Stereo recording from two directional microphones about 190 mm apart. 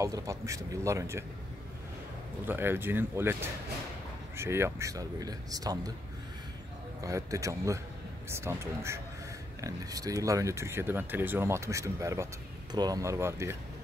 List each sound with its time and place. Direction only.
0.0 s speech: 15° right (ahead or behind)
2.4 s speech: 10° right (ahead or behind)
4.4 s speech: 15° right (ahead or behind)
7.0 s speech: 15° right (ahead or behind)